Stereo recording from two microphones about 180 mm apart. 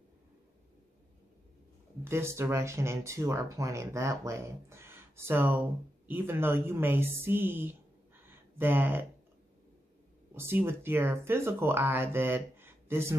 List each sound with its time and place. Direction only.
2.0 s speech: 15° right (ahead or behind)
8.3 s a sound: 10° right (ahead or behind)
10.3 s speech: 15° right (ahead or behind)